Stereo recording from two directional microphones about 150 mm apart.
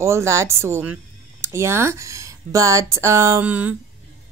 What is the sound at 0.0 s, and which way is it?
A woman's voice, 20° right (ahead or behind).